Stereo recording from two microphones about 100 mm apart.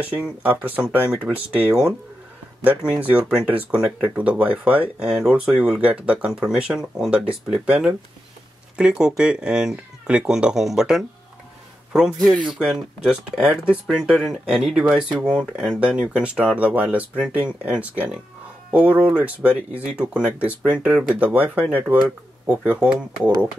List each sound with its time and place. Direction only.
0.6 s speech: 10° right (ahead or behind)
2.8 s speech: 15° right (ahead or behind)
12.2 s speech: 10° left (ahead or behind)
12.4 s speech: 5° right (ahead or behind)